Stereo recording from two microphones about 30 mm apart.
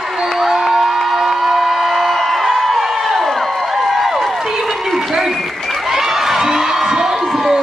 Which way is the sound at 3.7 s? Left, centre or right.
Centre.